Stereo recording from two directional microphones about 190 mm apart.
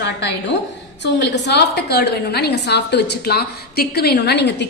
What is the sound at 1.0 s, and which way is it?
A woman's voice, 65° left (ahead or behind).